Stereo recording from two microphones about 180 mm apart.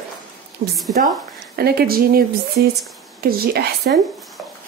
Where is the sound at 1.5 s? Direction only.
60° right (ahead or behind).